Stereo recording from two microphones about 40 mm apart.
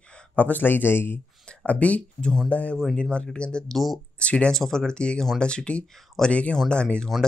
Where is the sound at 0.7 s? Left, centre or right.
Left.